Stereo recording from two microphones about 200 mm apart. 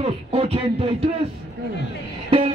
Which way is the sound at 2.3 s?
25° right (ahead or behind).